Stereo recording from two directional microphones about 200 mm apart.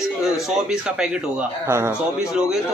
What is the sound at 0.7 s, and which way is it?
A man's voice, 5° right (ahead or behind).